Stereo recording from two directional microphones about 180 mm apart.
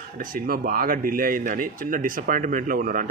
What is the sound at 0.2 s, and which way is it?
Speech, 50° right (ahead or behind).